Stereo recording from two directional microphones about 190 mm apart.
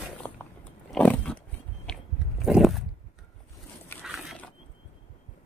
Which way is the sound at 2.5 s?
Centre (ahead or behind).